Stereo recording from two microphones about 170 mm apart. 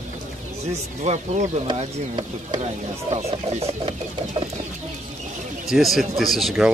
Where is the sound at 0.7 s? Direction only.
40° right (ahead or behind).